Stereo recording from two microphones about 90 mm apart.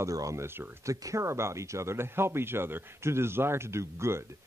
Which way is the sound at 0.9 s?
40° right (ahead or behind).